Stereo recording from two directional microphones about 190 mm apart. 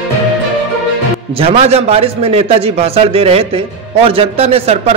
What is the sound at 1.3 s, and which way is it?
A man's voice, 30° right (ahead or behind).